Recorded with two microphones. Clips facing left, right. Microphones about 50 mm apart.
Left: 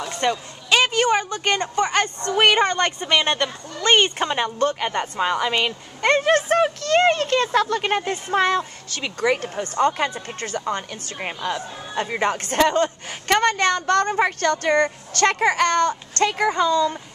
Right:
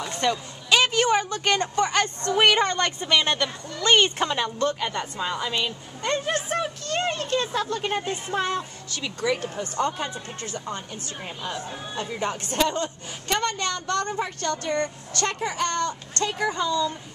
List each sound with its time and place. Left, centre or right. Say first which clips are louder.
0.2 s a woman's voice: left 2 dB; centre
4.6 s speech: left 4 dB; left
5.2 s speech: left 7 dB; left